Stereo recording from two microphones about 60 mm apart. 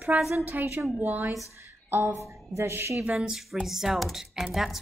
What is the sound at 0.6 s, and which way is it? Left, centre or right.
Speech, right.